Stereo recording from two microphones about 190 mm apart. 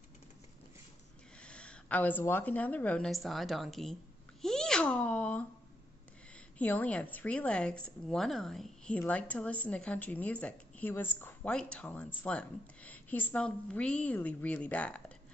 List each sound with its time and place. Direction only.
1.4 s a woman's voice: 5° left (ahead or behind)
4.4 s sneeze: 5° left (ahead or behind)
6.6 s a woman's voice: 10° left (ahead or behind)